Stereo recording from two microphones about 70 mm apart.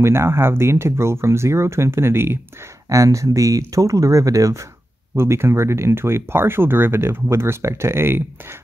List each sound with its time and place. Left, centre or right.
0.0 s speech: right
2.9 s speech: right
5.1 s speech: right